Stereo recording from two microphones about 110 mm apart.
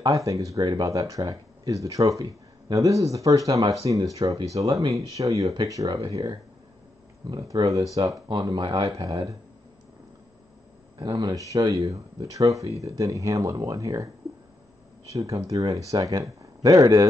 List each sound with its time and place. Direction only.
0.0 s speech: 30° right (ahead or behind)
11.0 s speech: 40° right (ahead or behind)
15.1 s speech: 30° right (ahead or behind)